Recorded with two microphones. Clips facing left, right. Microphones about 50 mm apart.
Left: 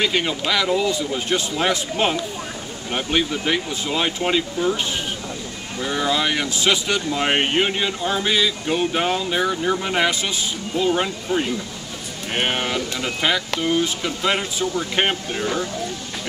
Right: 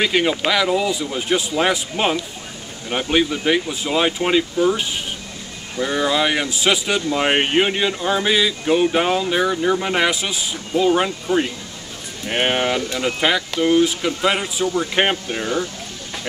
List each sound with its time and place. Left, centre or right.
0.0 s speech: centre